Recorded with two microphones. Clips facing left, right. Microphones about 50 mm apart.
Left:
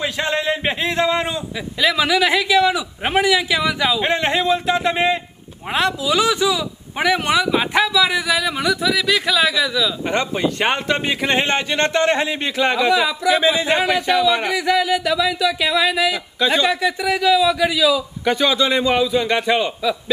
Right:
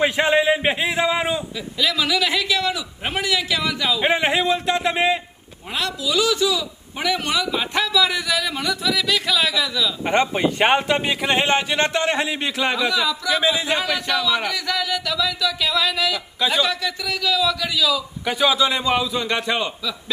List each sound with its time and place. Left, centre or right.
0.0 s a sound: centre
1.8 s a man's voice: left
4.0 s a man's voice: centre
5.7 s a man's voice: left
7.7 s a man's voice: centre
10.0 s speech: centre
11.1 s a man's voice: centre
12.9 s speech: centre
13.3 s a man's voice: centre
16.3 s a man's voice: centre
16.6 s a man's voice: left
18.2 s a man's voice: centre